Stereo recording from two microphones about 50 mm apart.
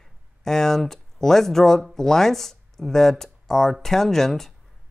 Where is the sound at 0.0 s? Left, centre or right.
Centre.